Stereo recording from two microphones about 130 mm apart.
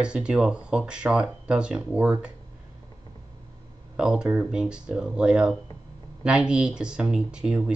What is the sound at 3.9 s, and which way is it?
Speech, 5° right (ahead or behind).